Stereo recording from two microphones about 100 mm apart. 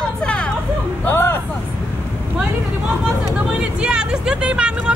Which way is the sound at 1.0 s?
25° left (ahead or behind).